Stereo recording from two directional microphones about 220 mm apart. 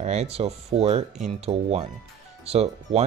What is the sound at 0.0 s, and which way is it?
Speech, 30° right (ahead or behind).